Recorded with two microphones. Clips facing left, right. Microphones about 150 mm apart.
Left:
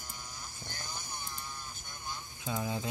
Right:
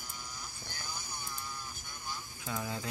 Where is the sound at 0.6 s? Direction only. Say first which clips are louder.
Left 2 dB; 20° left (ahead or behind).